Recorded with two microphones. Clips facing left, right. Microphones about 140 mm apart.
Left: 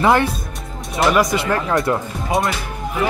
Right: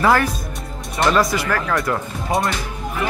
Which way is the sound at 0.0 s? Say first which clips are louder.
Left 1 dB; 20° left (ahead or behind).